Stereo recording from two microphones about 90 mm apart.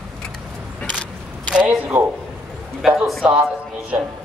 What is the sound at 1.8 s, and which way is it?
Speech, 20° right (ahead or behind).